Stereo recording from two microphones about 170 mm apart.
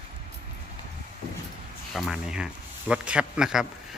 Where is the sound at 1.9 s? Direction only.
5° right (ahead or behind).